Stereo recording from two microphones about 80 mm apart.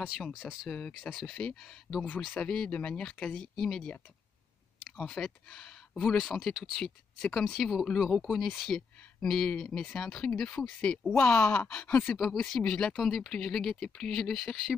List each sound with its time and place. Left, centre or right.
0.3 s speech: centre
0.7 s speech: centre
4.9 s speech: centre
5.2 s speech: centre
7.2 s speech: centre
12.2 s speech: centre